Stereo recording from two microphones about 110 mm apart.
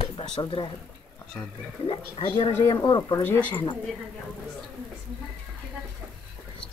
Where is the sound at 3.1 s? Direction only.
20° left (ahead or behind).